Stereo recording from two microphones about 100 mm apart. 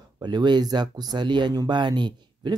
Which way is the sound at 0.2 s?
45° right (ahead or behind).